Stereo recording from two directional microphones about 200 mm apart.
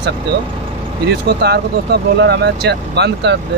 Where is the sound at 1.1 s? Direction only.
55° right (ahead or behind).